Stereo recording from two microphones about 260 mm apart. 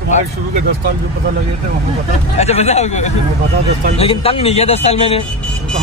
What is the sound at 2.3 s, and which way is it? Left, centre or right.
A man's voice, left.